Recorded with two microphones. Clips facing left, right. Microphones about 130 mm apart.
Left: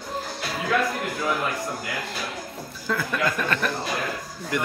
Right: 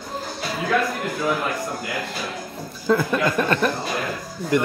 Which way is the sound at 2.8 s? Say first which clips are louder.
Right 6 dB; 25° right (ahead or behind).